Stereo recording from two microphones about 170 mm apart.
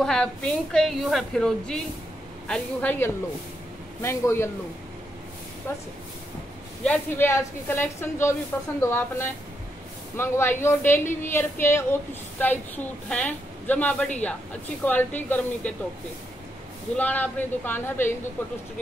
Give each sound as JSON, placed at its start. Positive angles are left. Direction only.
{"t": 0.0, "sound": "a woman's voice", "side_deg": 5}
{"t": 5.7, "sound": "a woman's voice", "side_deg": 15}
{"t": 16.9, "sound": "a woman's voice", "side_deg": 10}